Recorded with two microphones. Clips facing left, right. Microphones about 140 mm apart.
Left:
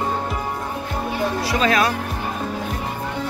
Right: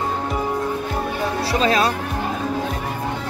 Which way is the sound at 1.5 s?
30° right (ahead or behind).